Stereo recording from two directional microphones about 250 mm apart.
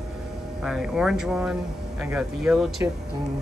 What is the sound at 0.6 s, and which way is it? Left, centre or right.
Speech, centre.